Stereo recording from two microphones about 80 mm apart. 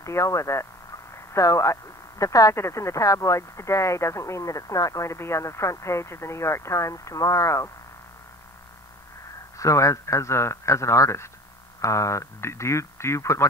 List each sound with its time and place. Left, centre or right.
0.0 s speech: left
9.6 s speech: left